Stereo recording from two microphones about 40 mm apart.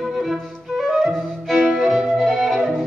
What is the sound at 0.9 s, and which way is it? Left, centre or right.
Music, right.